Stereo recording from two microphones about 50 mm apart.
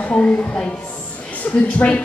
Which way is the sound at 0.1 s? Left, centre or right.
Left.